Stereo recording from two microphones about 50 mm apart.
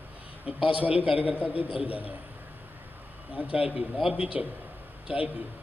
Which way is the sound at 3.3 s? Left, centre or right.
Right.